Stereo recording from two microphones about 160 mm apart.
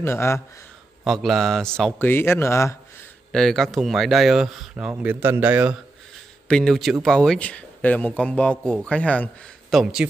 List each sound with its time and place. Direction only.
0.0 s speech: 15° left (ahead or behind)
1.0 s speech: centre (ahead or behind); by 2.8 s 15° left (ahead or behind)
3.3 s speech: centre (ahead or behind)
6.4 s speech: 5° left (ahead or behind)